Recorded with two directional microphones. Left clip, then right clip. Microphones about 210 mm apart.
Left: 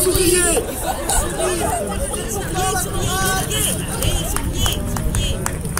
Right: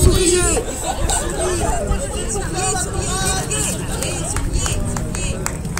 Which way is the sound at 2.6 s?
30° left (ahead or behind).